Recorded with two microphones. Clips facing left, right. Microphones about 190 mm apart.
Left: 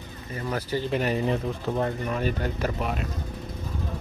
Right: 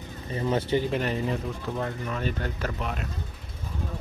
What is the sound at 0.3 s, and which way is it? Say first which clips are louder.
Speech: right 4 dB; 25° right (ahead or behind).